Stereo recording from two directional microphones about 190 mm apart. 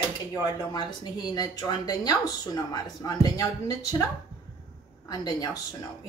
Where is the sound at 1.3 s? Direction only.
20° left (ahead or behind).